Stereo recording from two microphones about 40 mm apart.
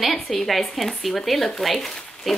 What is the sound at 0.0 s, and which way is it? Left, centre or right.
Speech, centre.